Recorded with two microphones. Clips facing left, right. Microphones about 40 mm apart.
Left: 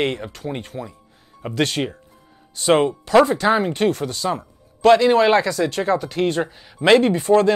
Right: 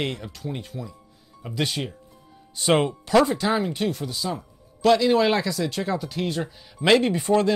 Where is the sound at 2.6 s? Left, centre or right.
Centre.